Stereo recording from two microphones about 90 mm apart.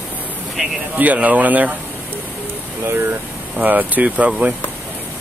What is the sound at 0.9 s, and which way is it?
Speech, 15° right (ahead or behind).